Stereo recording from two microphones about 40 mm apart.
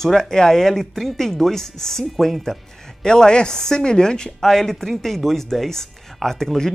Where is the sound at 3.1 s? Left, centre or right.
Centre.